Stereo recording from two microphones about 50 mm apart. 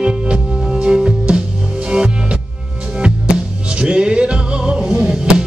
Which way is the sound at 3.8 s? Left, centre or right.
Centre.